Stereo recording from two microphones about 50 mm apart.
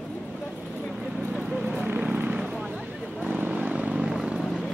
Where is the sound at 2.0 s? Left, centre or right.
Right.